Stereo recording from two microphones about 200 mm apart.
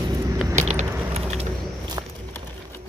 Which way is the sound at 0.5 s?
35° right (ahead or behind).